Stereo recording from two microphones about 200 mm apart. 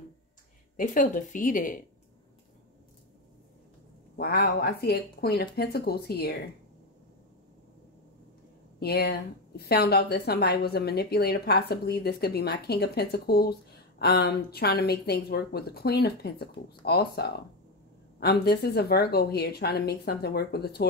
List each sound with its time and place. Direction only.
0.7 s speech: 40° left (ahead or behind)
4.2 s a woman's voice: 50° left (ahead or behind)
8.7 s a woman's voice: 50° left (ahead or behind)